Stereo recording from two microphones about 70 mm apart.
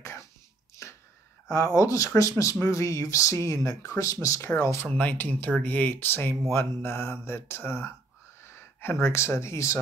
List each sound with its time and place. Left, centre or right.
0.0 s cough: left
0.8 s a sound: left
1.8 s speech: left
4.8 s speech: left
8.5 s a sound: left
9.0 s speech: left